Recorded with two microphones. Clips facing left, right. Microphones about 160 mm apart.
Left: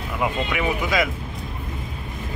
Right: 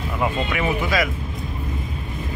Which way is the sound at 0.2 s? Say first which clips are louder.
Right 1 dB; 10° left (ahead or behind).